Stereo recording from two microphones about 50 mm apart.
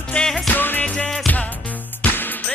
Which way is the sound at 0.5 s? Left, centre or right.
Left.